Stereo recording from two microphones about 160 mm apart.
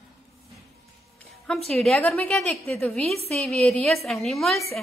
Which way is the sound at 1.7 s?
Centre (ahead or behind).